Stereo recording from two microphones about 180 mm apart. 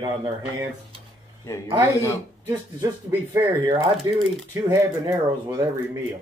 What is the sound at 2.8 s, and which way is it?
Speech, 10° right (ahead or behind).